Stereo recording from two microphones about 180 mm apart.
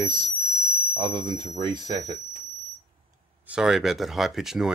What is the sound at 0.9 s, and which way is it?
Speech, 25° right (ahead or behind).